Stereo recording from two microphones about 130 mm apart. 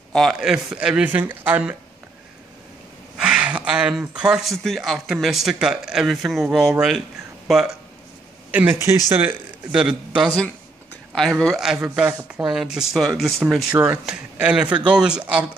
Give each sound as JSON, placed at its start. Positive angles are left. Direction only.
{"t": 0.1, "sound": "speech", "side_deg": 0}
{"t": 3.2, "sound": "speech", "side_deg": -5}
{"t": 9.7, "sound": "speech", "side_deg": -5}